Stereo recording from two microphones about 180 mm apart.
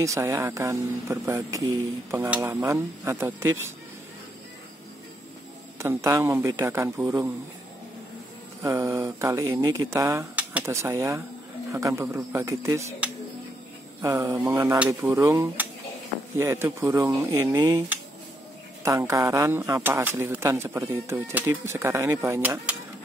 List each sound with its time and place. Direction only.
0.0 s speech: 15° right (ahead or behind)
5.8 s speech: 15° right (ahead or behind)
8.6 s speech: 15° right (ahead or behind)